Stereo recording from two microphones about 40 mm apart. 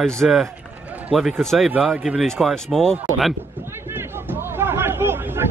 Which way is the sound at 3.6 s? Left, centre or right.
Right.